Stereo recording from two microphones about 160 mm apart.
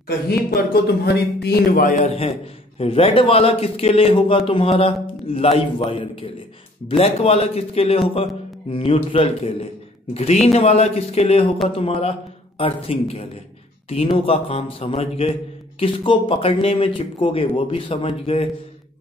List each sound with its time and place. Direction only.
0.5 s speech: 80° left
1.9 s a man's voice: 45° left (ahead or behind)